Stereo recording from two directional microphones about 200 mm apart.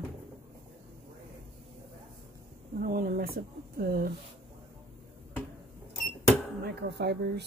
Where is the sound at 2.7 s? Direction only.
45° right (ahead or behind).